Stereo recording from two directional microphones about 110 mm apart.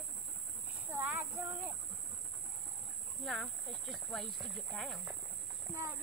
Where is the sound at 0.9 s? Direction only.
15° right (ahead or behind).